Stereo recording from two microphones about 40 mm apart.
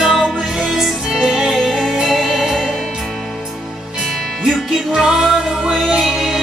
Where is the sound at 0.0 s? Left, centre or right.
Centre.